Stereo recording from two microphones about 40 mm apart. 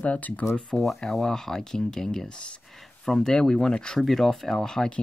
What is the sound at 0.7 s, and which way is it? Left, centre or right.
Speech, centre.